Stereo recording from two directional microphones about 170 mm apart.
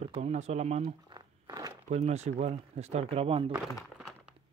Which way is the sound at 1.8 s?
40° right (ahead or behind).